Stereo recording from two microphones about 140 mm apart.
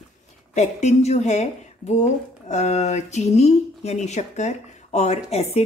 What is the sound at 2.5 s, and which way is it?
A woman's voice, 55° left (ahead or behind).